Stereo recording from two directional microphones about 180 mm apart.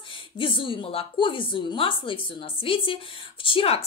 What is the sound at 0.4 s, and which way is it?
A woman's voice, 30° left (ahead or behind).